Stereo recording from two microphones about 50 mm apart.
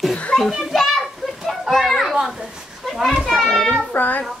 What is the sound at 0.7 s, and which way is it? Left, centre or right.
Children playing, centre.